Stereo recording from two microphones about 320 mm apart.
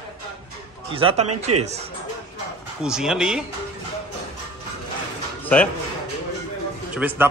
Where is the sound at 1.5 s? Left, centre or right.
Right.